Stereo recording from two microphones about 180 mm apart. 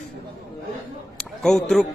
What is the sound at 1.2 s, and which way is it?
Speech, centre (ahead or behind).